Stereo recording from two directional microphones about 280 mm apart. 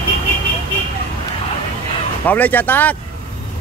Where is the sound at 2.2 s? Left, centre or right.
Centre.